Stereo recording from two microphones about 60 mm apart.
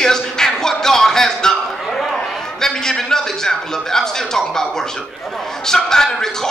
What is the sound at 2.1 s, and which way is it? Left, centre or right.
A man's voice, centre.